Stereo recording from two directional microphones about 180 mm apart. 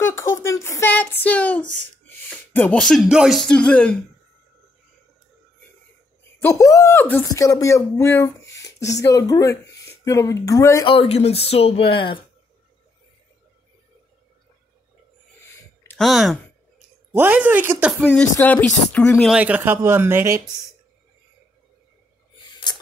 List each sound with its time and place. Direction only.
0.0 s a sound: 15° left (ahead or behind)
2.2 s speech: 10° left (ahead or behind)
6.4 s speech: 15° left (ahead or behind)
10.9 s speech: 35° left (ahead or behind)
15.9 s speech: centre (ahead or behind)
17.1 s speech: 10° right (ahead or behind)
18.0 s speech: 5° left (ahead or behind)
19.3 s speech: 10° right (ahead or behind)